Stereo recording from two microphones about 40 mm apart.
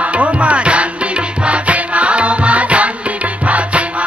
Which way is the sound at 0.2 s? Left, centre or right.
Right.